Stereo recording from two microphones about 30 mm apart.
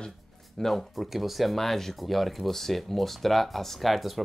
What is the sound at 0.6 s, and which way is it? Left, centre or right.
Speech, centre.